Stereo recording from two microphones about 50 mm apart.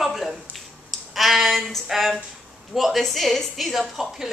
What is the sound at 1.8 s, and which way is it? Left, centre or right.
Speech, centre.